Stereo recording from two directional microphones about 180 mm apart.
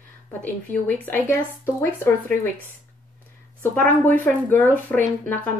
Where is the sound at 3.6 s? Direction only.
10° left (ahead or behind).